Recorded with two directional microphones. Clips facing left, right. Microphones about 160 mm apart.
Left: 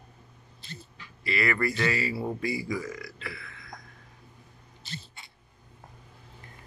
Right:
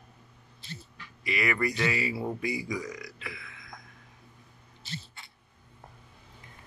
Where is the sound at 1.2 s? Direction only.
15° right (ahead or behind).